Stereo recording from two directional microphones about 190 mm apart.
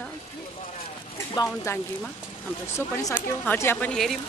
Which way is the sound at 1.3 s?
15° left (ahead or behind).